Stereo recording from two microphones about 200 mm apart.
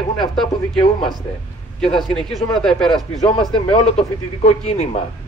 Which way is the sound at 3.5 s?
25° left (ahead or behind).